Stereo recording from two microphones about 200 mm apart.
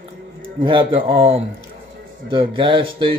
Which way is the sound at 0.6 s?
25° right (ahead or behind).